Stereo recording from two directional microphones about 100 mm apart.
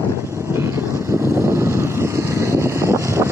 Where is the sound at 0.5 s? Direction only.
25° right (ahead or behind).